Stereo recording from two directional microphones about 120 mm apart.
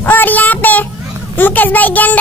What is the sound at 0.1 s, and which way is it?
Child singing, 15° left (ahead or behind).